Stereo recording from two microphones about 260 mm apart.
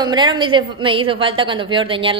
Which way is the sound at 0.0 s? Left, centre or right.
Centre.